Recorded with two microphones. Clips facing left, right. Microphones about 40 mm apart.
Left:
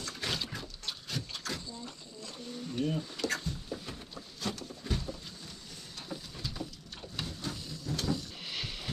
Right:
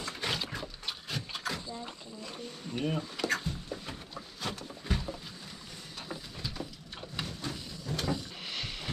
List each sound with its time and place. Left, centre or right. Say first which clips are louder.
0.0 s a sound: right 2 dB; centre
5.9 s vehicle: right 1 dB; centre
8.5 s rowboat: right 1 dB; centre